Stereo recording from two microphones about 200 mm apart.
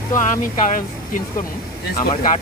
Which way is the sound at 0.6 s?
40° left (ahead or behind).